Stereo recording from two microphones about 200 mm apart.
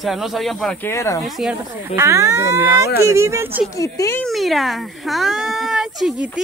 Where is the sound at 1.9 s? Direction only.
15° right (ahead or behind).